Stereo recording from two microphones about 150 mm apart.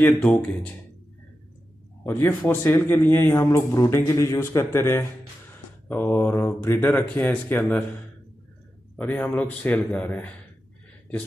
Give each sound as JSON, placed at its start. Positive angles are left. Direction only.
{"t": 0.0, "sound": "a man's voice", "side_deg": 10}
{"t": 2.0, "sound": "a man's voice", "side_deg": 15}
{"t": 8.9, "sound": "a man's voice", "side_deg": 10}